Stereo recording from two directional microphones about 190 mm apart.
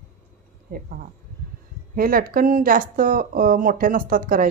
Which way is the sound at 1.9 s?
50° right (ahead or behind).